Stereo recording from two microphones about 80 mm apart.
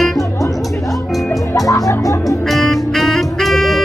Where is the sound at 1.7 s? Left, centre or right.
Left.